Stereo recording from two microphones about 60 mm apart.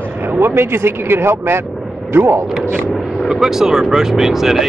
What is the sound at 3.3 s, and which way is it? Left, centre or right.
Speech, centre.